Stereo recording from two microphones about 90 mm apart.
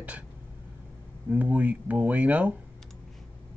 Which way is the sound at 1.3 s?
15° right (ahead or behind).